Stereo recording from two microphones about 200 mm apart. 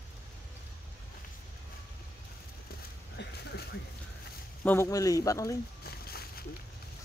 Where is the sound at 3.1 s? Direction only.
55° left (ahead or behind).